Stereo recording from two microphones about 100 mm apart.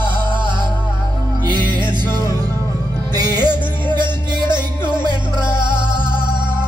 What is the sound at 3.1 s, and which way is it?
Music, 40° right (ahead or behind).